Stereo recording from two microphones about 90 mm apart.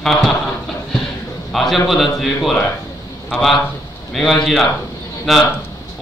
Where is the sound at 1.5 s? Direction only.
Centre (ahead or behind).